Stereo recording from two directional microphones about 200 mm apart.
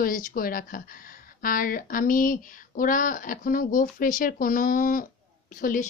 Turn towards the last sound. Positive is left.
turn(degrees=40)  # may be behind; listen again after turning